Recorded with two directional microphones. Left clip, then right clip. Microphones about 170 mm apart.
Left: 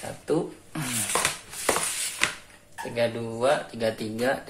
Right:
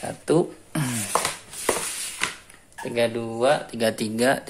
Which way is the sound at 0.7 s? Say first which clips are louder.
Right 5 dB; 50° right (ahead or behind).